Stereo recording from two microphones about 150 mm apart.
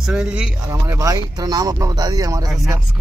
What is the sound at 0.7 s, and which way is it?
Speech, 20° right (ahead or behind).